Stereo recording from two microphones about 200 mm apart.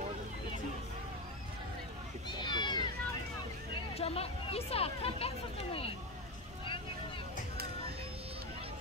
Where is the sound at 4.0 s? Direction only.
30° left (ahead or behind).